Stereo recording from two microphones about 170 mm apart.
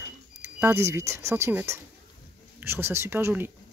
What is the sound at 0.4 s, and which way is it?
Speech, 10° right (ahead or behind).